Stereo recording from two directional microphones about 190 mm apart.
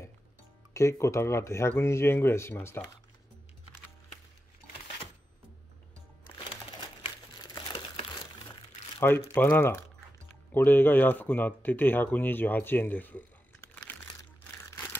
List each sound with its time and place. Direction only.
0.7 s speech: 15° left (ahead or behind)
7.5 s crumpling: 30° left (ahead or behind)
9.3 s speech: 10° left (ahead or behind)
13.9 s a sound: 10° left (ahead or behind)